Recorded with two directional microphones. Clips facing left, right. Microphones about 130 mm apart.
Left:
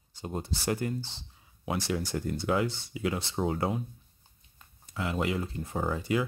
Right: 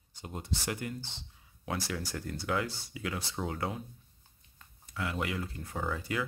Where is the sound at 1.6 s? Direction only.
20° left (ahead or behind).